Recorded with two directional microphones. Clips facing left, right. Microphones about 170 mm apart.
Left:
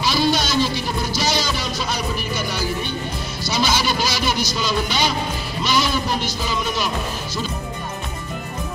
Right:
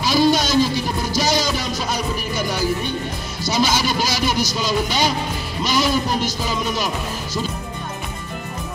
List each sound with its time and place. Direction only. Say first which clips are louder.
0.0 s music: right 3 dB; 45° right (ahead or behind)
3.4 s music: right 2 dB; 45° right (ahead or behind)